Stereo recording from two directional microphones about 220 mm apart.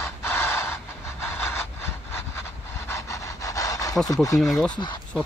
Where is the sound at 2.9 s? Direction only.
15° left (ahead or behind).